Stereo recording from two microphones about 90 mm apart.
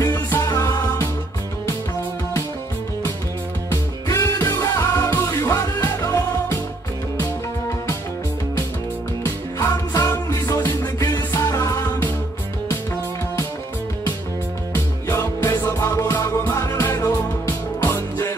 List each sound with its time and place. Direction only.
0.4 s music: 35° left (ahead or behind)
3.7 s music: 30° left (ahead or behind)
9.2 s music: 30° left (ahead or behind)
15.0 s music: 30° left (ahead or behind)